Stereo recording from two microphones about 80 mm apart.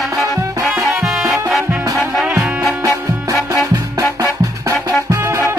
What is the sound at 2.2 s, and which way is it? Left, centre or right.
Music, centre.